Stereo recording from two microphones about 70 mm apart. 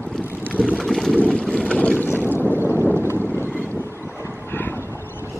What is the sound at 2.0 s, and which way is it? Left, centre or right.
Boat, left.